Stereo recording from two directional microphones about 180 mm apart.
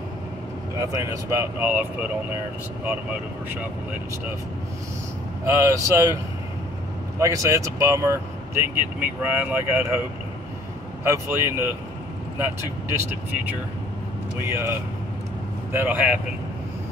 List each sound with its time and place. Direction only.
0.7 s speech: 15° right (ahead or behind)
5.5 s speech: 15° right (ahead or behind)
7.2 s speech: 15° right (ahead or behind)
11.1 s speech: 15° right (ahead or behind)
12.9 s speech: 10° right (ahead or behind)